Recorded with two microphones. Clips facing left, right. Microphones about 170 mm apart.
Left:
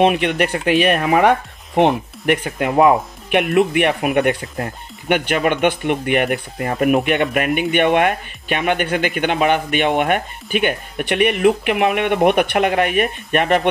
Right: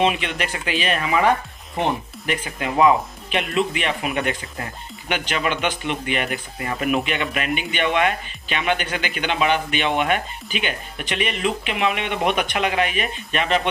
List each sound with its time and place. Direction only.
0.0 s speech: 60° left (ahead or behind)
1.8 s speech: 70° left (ahead or behind)